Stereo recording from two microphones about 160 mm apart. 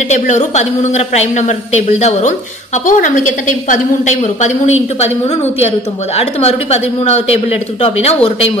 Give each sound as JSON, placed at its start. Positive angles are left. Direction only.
{"t": 0.1, "sound": "a woman's voice", "side_deg": 45}
{"t": 6.1, "sound": "a woman's voice", "side_deg": 40}